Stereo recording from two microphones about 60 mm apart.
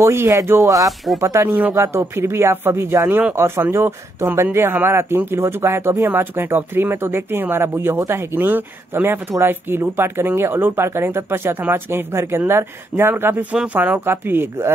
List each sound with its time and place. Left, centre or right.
0.0 s speech: right
0.6 s speech: right
0.8 s speech: centre
1.2 s speech: right